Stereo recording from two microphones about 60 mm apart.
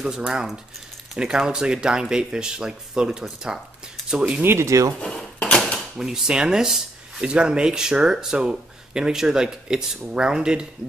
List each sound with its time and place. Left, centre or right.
0.0 s speech: centre
4.4 s speech: right
4.6 s speech: right
5.1 s a sound: centre
5.8 s speech: centre